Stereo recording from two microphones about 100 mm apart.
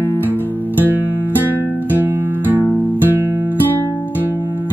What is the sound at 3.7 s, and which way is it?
Music, 20° left (ahead or behind).